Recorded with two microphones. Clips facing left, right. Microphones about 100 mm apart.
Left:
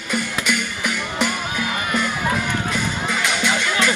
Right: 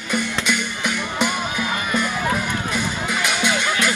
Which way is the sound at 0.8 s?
20° right (ahead or behind).